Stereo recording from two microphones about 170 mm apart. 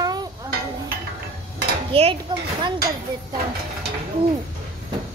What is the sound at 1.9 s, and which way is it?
Speech, 35° right (ahead or behind).